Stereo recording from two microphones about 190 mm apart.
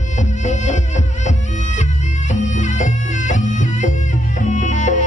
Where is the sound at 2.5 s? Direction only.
40° left (ahead or behind).